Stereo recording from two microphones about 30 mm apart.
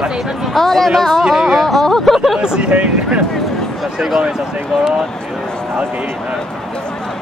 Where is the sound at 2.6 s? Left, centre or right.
Right.